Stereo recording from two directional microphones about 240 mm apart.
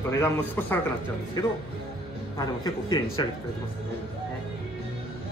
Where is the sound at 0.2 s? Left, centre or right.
Centre.